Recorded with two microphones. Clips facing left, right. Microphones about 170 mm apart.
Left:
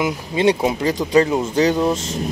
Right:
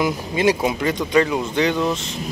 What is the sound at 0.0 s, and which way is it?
Speech, 25° left (ahead or behind).